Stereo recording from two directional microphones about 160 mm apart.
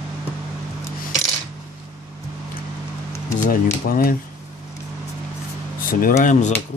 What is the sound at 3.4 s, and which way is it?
Speech, 65° left (ahead or behind).